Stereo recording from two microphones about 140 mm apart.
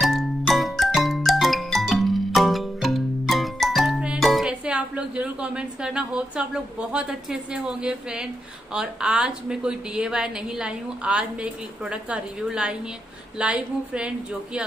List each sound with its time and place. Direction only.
0.0 s music: centre (ahead or behind)
8.7 s a woman's voice: 5° right (ahead or behind)